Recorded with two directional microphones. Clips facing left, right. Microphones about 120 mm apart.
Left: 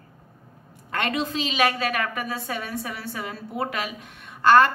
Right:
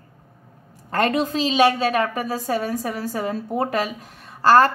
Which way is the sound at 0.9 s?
40° right (ahead or behind).